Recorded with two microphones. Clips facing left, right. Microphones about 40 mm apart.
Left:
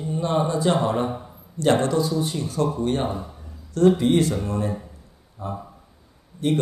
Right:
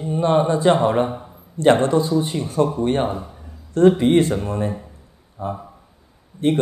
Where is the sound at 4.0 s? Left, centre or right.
Right.